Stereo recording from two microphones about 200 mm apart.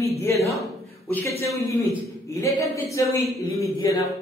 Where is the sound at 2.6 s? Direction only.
15° left (ahead or behind).